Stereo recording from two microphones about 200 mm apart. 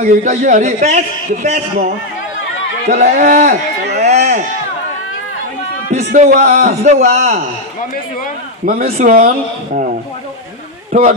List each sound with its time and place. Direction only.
0.0 s a man's voice: 40° right (ahead or behind)
2.9 s a man's voice: 35° right (ahead or behind)
4.0 s baby cry: 35° right (ahead or behind)
5.9 s a man's voice: 35° right (ahead or behind)
8.8 s a man's voice: 35° right (ahead or behind)
10.9 s speech: 40° right (ahead or behind)